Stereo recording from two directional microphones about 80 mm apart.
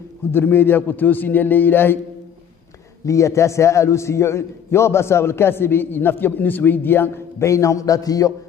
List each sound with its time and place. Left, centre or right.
0.3 s a man's voice: left
3.1 s a man's voice: left
7.4 s a man's voice: left